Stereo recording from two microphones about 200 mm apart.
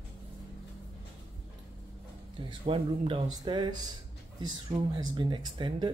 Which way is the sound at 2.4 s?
25° right (ahead or behind).